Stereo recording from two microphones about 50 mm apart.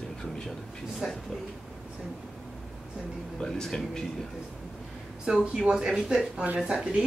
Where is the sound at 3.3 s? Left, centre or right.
Centre.